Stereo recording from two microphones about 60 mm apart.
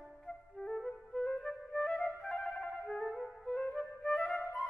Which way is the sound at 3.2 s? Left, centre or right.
Centre.